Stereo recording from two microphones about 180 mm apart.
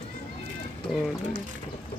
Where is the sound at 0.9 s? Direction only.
5° right (ahead or behind).